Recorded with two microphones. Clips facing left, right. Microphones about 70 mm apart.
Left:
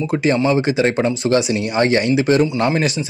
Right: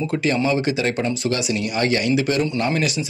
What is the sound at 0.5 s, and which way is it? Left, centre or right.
A man's voice, left.